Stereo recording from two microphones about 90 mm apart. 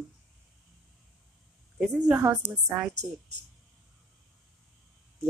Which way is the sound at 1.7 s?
15° right (ahead or behind).